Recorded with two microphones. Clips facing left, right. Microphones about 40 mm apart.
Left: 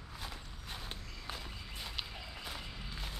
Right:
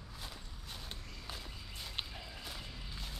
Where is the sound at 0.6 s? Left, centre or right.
Centre.